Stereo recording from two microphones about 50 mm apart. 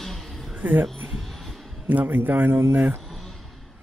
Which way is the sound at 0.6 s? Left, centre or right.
Right.